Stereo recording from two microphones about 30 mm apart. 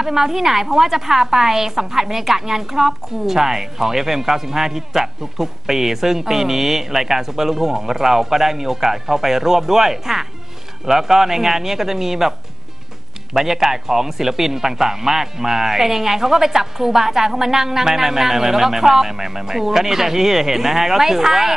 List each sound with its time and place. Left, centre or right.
0.0 s a woman's voice: centre